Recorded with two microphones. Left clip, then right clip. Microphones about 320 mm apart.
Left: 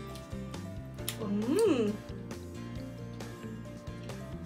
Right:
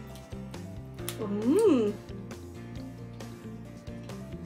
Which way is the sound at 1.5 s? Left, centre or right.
Right.